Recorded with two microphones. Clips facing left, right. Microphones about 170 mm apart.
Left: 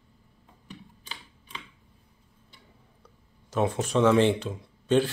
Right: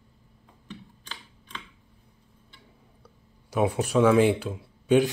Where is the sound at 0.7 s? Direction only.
10° left (ahead or behind).